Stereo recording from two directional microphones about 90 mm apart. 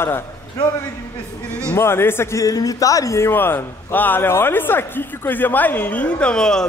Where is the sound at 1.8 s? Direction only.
25° left (ahead or behind).